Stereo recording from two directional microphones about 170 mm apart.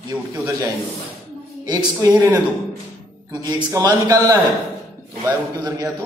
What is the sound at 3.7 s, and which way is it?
A man's voice, 20° right (ahead or behind).